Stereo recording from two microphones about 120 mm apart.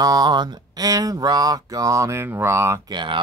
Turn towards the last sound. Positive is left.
turn(degrees=-40)  # may be behind; listen again after turning